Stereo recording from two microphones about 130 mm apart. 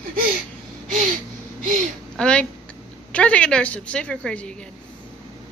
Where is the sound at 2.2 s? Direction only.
10° left (ahead or behind).